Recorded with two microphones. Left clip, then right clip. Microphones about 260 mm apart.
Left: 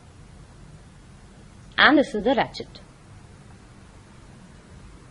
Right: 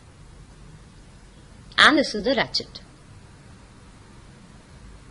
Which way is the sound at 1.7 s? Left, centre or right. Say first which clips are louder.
Right 1 dB; centre.